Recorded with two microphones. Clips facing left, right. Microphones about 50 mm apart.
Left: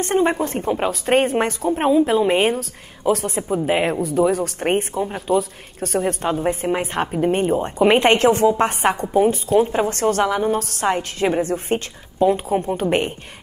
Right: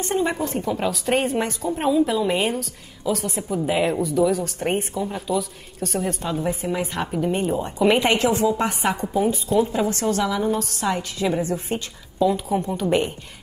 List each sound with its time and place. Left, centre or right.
0.0 s a woman's voice: left